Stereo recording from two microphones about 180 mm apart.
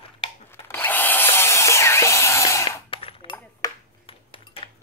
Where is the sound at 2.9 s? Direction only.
30° left (ahead or behind).